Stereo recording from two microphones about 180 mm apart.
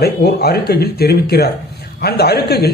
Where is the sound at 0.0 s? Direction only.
60° left (ahead or behind).